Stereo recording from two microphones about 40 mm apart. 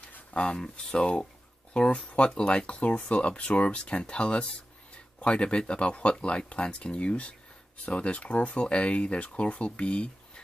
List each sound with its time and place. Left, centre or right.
0.3 s speech: left